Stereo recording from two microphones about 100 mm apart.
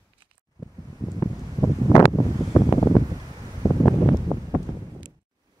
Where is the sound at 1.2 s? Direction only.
35° left (ahead or behind).